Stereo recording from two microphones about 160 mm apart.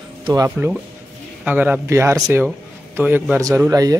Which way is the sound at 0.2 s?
25° right (ahead or behind).